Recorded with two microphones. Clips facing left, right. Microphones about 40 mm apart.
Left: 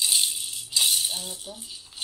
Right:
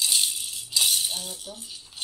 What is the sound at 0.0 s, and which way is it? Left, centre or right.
Music, centre.